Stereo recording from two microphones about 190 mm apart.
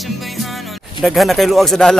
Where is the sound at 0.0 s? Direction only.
Centre (ahead or behind).